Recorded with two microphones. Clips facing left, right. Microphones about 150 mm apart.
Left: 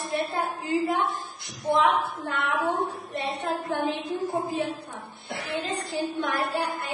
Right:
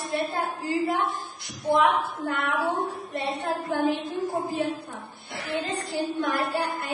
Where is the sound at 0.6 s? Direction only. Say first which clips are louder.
Left 1 dB; 20° left (ahead or behind).